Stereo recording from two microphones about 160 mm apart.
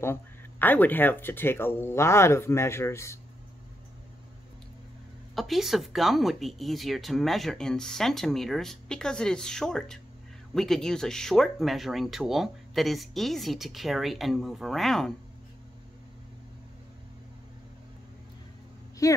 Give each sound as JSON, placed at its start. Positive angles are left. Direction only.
{"t": 0.0, "sound": "speech", "side_deg": 15}
{"t": 5.3, "sound": "speech", "side_deg": 0}
{"t": 19.0, "sound": "a woman's voice", "side_deg": 20}